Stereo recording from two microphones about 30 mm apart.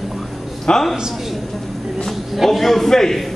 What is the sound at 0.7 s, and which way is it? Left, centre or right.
Speech, left.